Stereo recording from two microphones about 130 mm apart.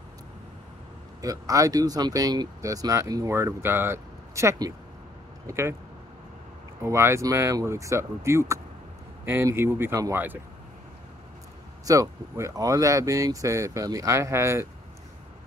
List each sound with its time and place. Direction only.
1.2 s speech: 25° right (ahead or behind)
6.8 s speech: 20° right (ahead or behind)
11.8 s speech: 25° right (ahead or behind)